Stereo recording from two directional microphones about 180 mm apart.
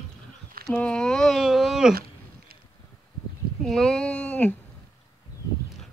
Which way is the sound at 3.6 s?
5° left (ahead or behind).